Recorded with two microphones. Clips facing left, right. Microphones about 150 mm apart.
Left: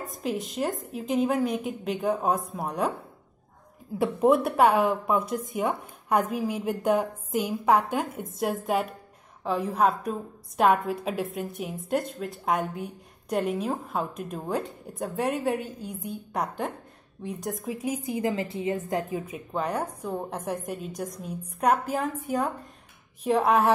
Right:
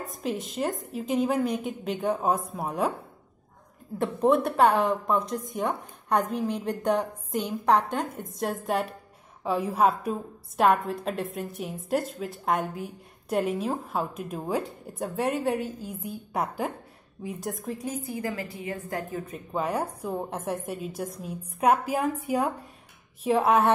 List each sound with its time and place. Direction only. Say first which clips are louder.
0.0 s a woman's voice: left 1 dB; centre (ahead or behind)
4.0 s a woman's voice: left 1 dB; 5° left (ahead or behind)
17.8 s a woman's voice: left 5 dB; 15° left (ahead or behind)
19.2 s a woman's voice: even; centre (ahead or behind)